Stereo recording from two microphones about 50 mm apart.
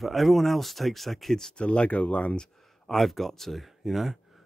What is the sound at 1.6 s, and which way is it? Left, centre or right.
Speech, left.